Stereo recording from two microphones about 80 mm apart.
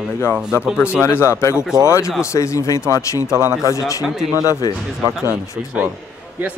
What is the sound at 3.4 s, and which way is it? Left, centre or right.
Speech, right.